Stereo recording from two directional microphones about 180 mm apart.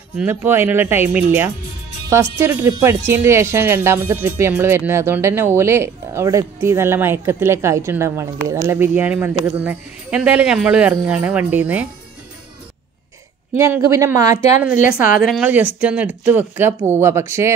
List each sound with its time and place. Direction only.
0.2 s speech: 10° right (ahead or behind)
13.6 s speech: 15° right (ahead or behind)
15.1 s speech: 5° right (ahead or behind)